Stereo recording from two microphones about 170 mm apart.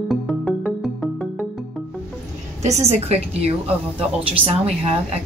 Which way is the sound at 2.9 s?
40° right (ahead or behind).